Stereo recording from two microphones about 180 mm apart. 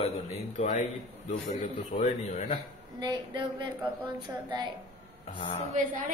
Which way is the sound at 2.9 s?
25° right (ahead or behind).